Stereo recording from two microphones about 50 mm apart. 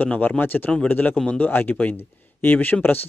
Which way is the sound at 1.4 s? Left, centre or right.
Left.